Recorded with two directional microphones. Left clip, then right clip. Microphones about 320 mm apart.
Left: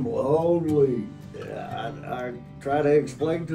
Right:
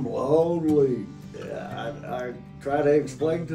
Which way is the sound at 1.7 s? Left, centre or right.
Centre.